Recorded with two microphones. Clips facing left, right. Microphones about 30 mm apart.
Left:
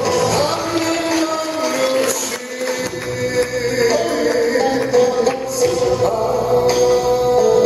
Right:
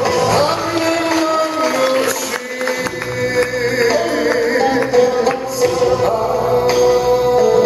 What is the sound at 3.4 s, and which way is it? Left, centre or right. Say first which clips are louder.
Music: right 1 dB; centre.